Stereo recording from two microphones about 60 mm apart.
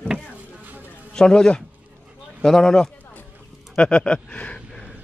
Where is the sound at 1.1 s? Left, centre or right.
Centre.